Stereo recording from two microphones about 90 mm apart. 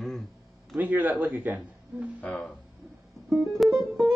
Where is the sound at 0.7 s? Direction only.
20° right (ahead or behind).